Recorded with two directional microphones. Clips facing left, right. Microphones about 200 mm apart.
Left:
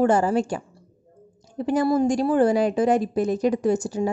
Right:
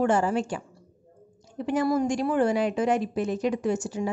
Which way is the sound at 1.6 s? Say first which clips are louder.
Left 4 dB; 35° left (ahead or behind).